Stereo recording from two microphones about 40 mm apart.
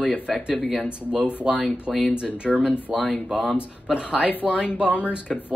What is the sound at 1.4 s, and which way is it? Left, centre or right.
Speech, centre.